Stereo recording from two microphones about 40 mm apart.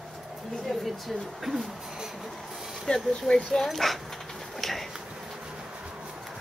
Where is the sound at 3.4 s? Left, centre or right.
Centre.